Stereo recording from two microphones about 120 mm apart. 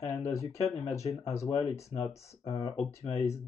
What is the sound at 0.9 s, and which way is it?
Speech, 25° left (ahead or behind).